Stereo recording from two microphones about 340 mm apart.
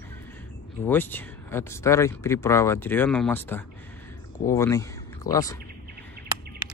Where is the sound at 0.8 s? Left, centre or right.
Centre.